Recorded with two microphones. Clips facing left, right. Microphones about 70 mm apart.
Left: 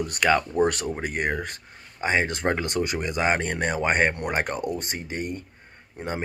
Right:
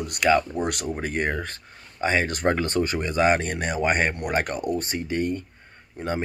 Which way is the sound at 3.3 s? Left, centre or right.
Left.